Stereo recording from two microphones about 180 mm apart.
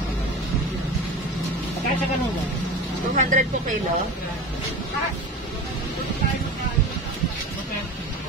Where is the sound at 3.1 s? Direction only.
45° right (ahead or behind).